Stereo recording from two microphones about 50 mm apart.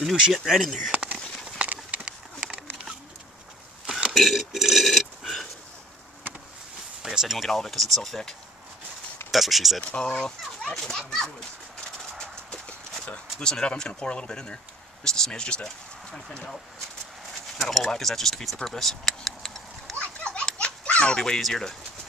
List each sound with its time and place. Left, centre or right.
0.0 s speech: centre
0.9 s a sound: right
4.1 s a sound: centre
7.0 s a sound: centre
7.3 s speech: centre
9.3 s speech: centre
9.9 s speech: centre
12.0 s horse: centre
13.0 s speech: centre
17.6 s speech: centre
20.0 s children playing: left
20.5 s a sound: left
21.2 s speech: centre